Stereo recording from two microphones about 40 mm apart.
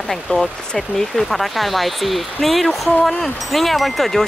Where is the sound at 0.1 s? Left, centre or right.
Centre.